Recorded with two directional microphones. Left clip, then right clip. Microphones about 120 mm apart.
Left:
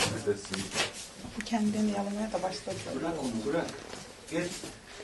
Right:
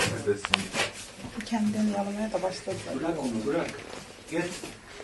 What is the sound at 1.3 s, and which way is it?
Speech, 25° left (ahead or behind).